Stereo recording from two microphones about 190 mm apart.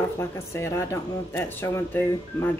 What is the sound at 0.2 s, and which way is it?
Speech, 15° left (ahead or behind).